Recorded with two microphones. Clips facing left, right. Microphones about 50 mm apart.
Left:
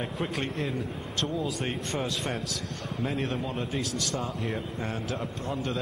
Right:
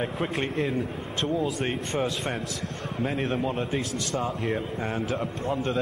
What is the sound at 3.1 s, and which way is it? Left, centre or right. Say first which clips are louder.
Speech: right 4 dB; right.